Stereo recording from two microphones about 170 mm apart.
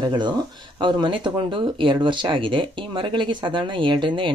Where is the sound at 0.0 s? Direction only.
25° right (ahead or behind).